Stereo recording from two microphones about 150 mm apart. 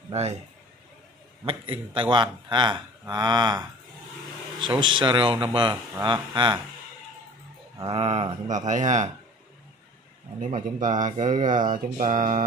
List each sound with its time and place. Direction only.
0.1 s a man's voice: 45° right (ahead or behind)
1.4 s speech: 35° right (ahead or behind)
7.9 s speech: 40° right (ahead or behind)
8.5 s speech: 55° right (ahead or behind)
10.4 s speech: 55° right (ahead or behind)